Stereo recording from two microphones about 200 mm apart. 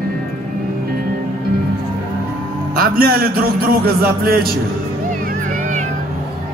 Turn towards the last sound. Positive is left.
turn(degrees=-50)  # may be behind; listen again after turning